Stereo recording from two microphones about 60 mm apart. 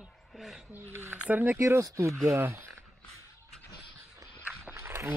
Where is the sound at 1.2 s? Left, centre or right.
Right.